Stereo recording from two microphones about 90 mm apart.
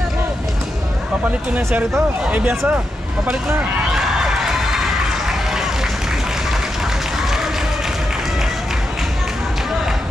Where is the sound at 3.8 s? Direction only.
5° right (ahead or behind).